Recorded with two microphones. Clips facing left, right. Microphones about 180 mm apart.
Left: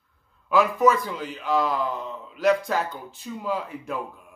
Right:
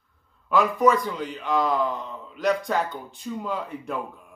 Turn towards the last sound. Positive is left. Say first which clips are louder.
# even
turn(degrees=0)  # may be behind; listen again after turning